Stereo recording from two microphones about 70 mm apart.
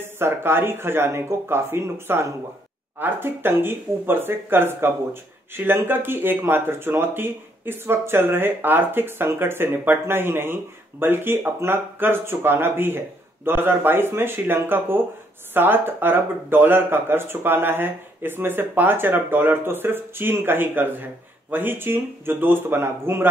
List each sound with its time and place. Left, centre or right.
0.0 s speech: right